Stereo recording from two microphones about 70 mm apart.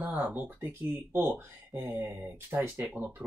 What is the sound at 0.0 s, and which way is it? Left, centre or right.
Speech, right.